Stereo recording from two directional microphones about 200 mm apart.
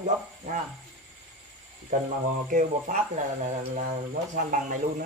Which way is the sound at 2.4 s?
40° right (ahead or behind).